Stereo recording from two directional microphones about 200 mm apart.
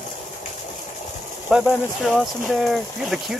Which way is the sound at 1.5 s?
5° right (ahead or behind).